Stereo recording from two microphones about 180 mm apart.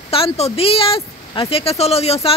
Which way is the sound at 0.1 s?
30° left (ahead or behind).